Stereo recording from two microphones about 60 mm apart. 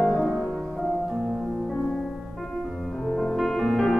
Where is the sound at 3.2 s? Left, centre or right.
Centre.